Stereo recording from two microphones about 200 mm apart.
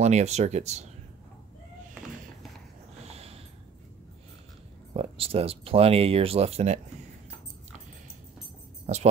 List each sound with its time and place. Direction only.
0.0 s speech: 35° right (ahead or behind)
3.1 s a sound: 30° right (ahead or behind)
4.9 s speech: 30° right (ahead or behind)